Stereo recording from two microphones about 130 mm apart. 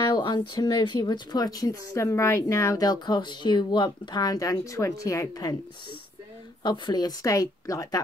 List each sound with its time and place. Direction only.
0.0 s speech: 35° left (ahead or behind)
6.6 s speech: 35° left (ahead or behind)